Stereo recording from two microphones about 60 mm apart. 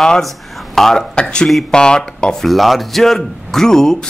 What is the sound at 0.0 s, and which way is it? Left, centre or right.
Speech, centre.